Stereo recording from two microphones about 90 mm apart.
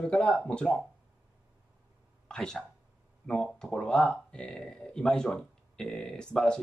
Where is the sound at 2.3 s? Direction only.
5° left (ahead or behind).